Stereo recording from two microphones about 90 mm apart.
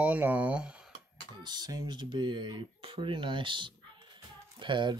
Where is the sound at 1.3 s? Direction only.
50° right (ahead or behind).